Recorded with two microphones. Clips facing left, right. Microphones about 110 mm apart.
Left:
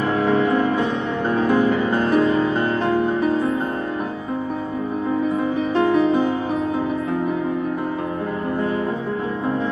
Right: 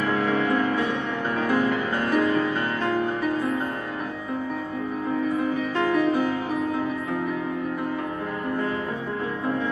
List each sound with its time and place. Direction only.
0.1 s music: 25° left (ahead or behind)
5.8 s music: 25° left (ahead or behind)